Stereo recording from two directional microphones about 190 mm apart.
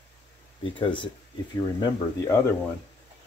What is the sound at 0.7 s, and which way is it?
Speech, 25° left (ahead or behind).